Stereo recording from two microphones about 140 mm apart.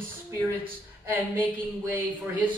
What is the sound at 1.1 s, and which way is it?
A man's voice, 10° right (ahead or behind).